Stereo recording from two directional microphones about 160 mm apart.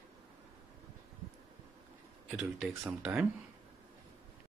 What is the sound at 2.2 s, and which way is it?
Speech, 5° right (ahead or behind).